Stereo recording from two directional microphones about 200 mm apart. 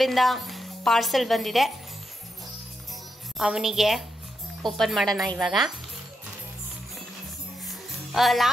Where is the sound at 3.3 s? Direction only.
Centre (ahead or behind).